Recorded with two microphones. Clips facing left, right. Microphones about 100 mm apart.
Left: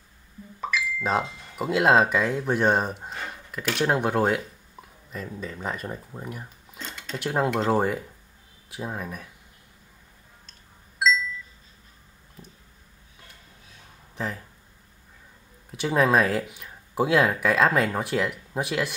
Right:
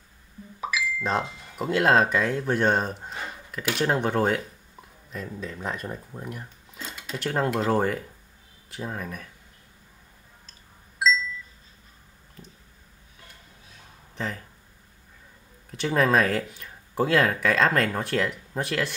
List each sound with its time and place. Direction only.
0.6 s a sound: 5° right (ahead or behind)
1.2 s speech: 10° right (ahead or behind)
1.6 s speech: 5° left (ahead or behind)
6.8 s dishes: 5° right (ahead or behind)
7.2 s speech: 5° left (ahead or behind)
11.0 s a sound: centre (ahead or behind)
14.1 s speech: 5° left (ahead or behind)
15.7 s speech: 5° left (ahead or behind)